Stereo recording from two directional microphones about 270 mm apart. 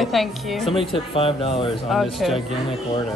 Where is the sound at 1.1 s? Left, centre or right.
Left.